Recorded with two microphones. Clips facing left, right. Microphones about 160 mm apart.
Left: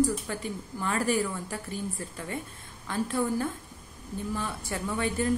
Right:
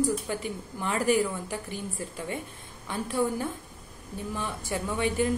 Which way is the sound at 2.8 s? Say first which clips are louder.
Even; 15° right (ahead or behind).